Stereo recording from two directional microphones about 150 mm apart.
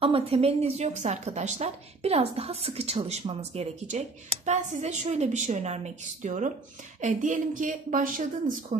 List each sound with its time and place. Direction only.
0.0 s a woman's voice: 40° right (ahead or behind); by 8.5 s 60° right (ahead or behind)